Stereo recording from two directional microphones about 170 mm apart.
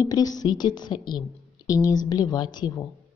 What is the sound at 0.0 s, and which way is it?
A woman's voice, 20° left (ahead or behind).